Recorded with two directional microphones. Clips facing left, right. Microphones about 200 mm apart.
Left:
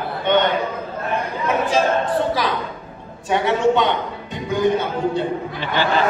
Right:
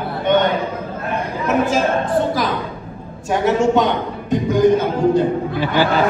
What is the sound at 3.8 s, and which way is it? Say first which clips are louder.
Speech: right 2 dB; 45° right (ahead or behind).